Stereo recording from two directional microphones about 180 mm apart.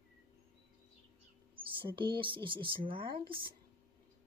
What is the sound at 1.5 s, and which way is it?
Speech, 30° right (ahead or behind).